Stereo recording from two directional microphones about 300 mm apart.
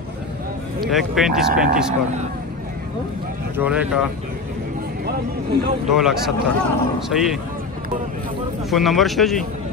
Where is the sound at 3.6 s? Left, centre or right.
Centre.